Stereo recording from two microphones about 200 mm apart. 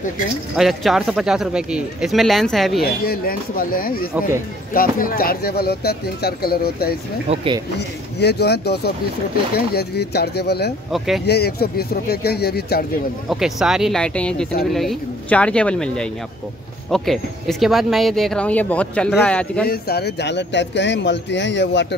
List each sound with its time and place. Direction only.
0.6 s speech: centre (ahead or behind)
2.8 s speech: 50° left (ahead or behind)
7.2 s speech: 25° right (ahead or behind)
8.2 s speech: 55° left (ahead or behind)
10.9 s speech: centre (ahead or behind)
11.2 s speech: 55° left (ahead or behind)
13.3 s speech: centre (ahead or behind)
19.6 s speech: 50° left (ahead or behind)